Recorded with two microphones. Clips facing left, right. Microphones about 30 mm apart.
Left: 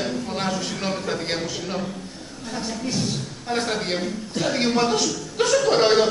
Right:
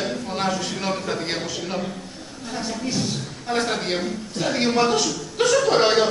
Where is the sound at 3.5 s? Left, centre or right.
Centre.